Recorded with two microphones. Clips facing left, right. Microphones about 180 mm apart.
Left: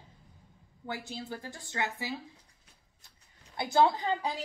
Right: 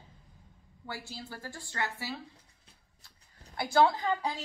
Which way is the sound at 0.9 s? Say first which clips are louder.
Left 4 dB; 20° left (ahead or behind).